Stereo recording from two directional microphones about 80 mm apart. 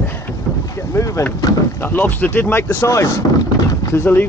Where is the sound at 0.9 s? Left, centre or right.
Left.